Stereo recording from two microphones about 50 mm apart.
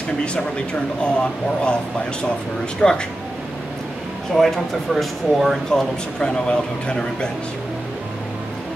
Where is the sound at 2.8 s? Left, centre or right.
Centre.